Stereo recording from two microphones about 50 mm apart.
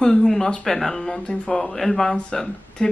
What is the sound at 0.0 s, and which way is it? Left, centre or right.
Speech, centre.